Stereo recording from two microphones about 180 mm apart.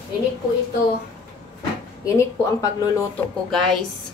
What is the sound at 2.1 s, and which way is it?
Speech, 20° left (ahead or behind).